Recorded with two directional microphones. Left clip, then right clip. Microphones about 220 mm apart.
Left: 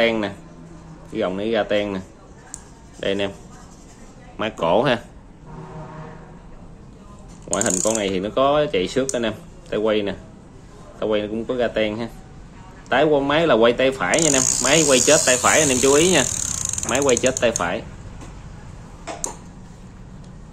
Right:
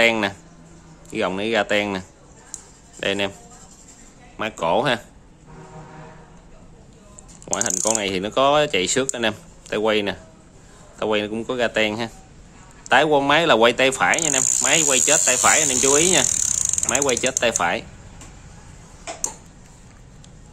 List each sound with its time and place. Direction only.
0.0 s speech: 30° right (ahead or behind)
4.4 s speech: 15° right (ahead or behind)
7.4 s speech: 30° right (ahead or behind)
17.5 s speech: 25° right (ahead or behind)